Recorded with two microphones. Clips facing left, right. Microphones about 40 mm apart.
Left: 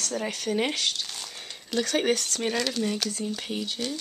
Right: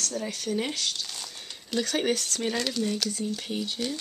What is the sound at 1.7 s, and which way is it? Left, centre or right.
Speech, centre.